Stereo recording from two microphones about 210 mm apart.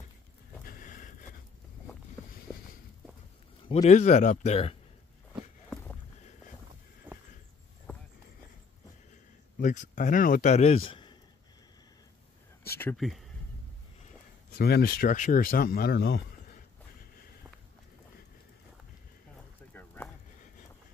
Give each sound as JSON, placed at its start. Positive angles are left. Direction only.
{"t": 0.7, "sound": "a sound", "side_deg": 40}
{"t": 3.6, "sound": "speech", "side_deg": 30}
{"t": 7.9, "sound": "clip-clop", "side_deg": 10}
{"t": 9.6, "sound": "speech", "side_deg": 40}
{"t": 12.6, "sound": "speech", "side_deg": 10}
{"t": 12.9, "sound": "speech", "side_deg": 0}
{"t": 14.5, "sound": "speech", "side_deg": 50}
{"t": 19.7, "sound": "a sound", "side_deg": 10}